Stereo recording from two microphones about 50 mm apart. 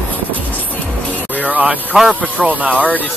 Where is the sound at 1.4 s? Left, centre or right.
Right.